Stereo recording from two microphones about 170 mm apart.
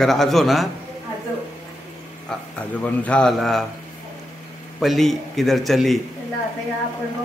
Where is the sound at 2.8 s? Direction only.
5° left (ahead or behind).